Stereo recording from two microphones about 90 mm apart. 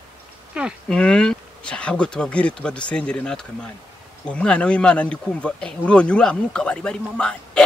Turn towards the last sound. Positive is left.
turn(degrees=10)  # may be behind; listen again after turning